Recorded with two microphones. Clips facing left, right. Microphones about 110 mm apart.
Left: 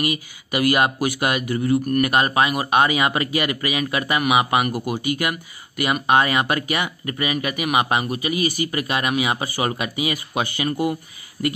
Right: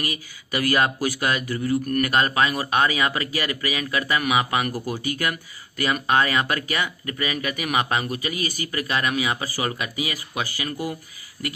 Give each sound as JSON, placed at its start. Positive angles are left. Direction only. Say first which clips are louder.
{"t": 0.0, "sound": "speech", "louder": "left 6 dB", "side_deg": 15}